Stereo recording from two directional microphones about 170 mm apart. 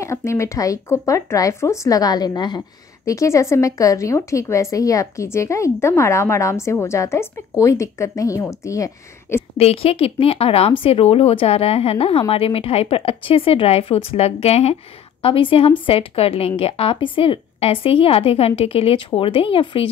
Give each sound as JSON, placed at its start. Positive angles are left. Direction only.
{"t": 0.0, "sound": "a woman's voice", "side_deg": 15}
{"t": 9.6, "sound": "speech", "side_deg": 35}